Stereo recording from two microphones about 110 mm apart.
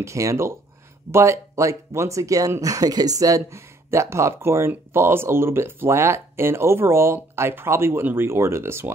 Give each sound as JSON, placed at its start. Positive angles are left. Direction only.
{"t": 0.0, "sound": "speech", "side_deg": -30}